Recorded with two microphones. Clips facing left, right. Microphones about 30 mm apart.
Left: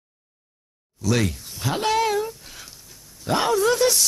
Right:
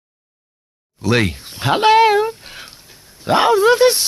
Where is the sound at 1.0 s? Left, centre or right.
Right.